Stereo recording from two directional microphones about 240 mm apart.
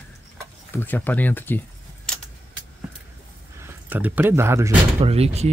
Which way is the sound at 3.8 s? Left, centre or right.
Centre.